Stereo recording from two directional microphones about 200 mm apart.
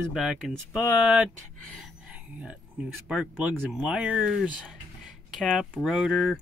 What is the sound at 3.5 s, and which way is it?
Speech, 15° left (ahead or behind).